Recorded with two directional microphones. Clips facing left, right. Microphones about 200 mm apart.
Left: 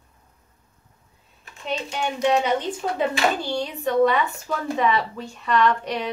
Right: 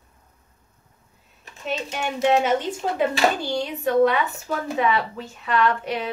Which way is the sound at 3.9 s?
5° right (ahead or behind).